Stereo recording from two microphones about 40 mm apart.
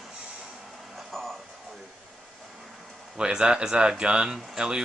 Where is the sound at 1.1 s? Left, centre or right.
Centre.